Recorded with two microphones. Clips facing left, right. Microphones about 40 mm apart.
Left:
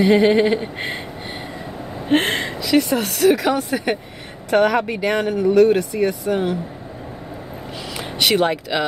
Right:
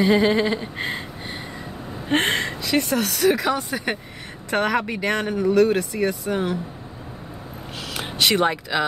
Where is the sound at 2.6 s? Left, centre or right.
Centre.